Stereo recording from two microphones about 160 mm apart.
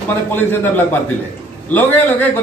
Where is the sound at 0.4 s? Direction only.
15° left (ahead or behind).